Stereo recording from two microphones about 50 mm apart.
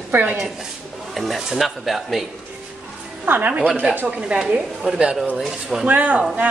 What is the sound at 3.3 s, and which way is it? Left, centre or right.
Speech, right.